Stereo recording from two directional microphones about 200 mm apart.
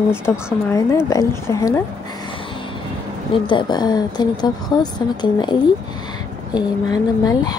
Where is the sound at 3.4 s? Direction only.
20° left (ahead or behind).